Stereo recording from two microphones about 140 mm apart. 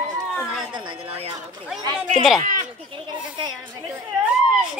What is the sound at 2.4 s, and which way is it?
Goat, 70° right (ahead or behind).